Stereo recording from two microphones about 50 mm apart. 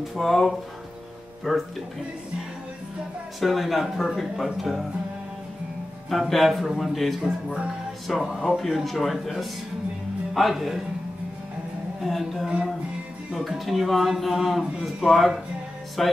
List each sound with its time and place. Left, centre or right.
0.0 s speech: centre
3.3 s speech: centre
6.0 s speech: centre
8.2 s speech: centre
8.5 s speech: centre
12.0 s speech: centre